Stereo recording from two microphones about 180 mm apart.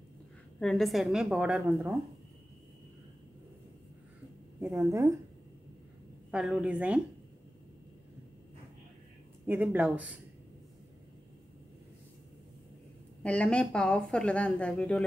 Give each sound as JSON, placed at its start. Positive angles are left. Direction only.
{"t": 0.6, "sound": "speech", "side_deg": 0}
{"t": 4.7, "sound": "a woman's voice", "side_deg": -20}
{"t": 6.3, "sound": "a woman's voice", "side_deg": -5}
{"t": 9.5, "sound": "a woman's voice", "side_deg": -10}
{"t": 13.2, "sound": "speech", "side_deg": 5}